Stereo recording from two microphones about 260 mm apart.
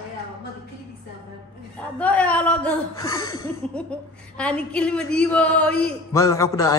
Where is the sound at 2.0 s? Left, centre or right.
Centre.